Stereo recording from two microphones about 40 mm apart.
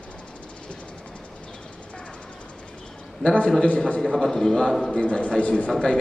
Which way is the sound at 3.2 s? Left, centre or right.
Left.